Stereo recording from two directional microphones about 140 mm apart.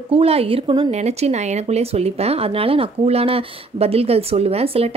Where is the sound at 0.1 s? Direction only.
45° right (ahead or behind).